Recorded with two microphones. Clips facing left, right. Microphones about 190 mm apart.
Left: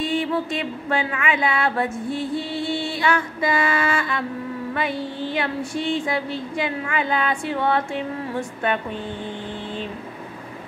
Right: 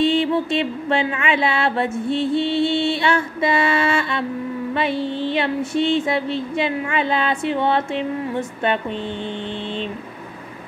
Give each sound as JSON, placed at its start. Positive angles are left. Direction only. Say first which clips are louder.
{"t": 0.0, "sound": "music", "louder": "right 5 dB", "side_deg": -25}